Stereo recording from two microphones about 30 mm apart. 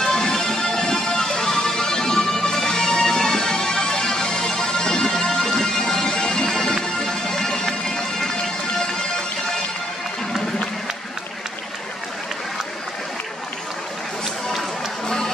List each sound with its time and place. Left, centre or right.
0.0 s music: centre
15.0 s music: centre